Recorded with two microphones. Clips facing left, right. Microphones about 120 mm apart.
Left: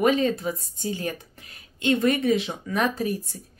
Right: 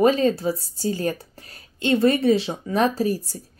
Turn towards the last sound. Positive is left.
turn(degrees=-35)  # may be behind; listen again after turning